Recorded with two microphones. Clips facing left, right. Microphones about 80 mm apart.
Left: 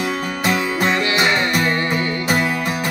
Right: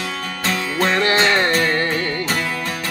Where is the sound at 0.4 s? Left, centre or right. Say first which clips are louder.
Left 1 dB; centre.